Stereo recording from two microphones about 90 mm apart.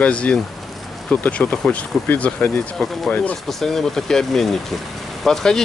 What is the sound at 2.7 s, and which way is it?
Speech, 5° left (ahead or behind).